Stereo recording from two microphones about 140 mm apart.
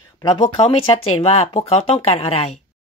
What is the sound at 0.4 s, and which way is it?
Speech, 45° left (ahead or behind).